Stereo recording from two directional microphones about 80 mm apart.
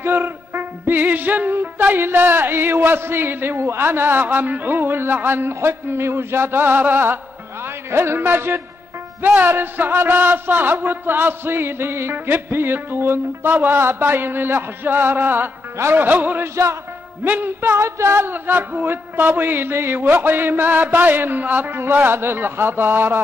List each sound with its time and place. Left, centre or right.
0.0 s a man's voice: right
7.6 s music: right
9.2 s a man's voice: right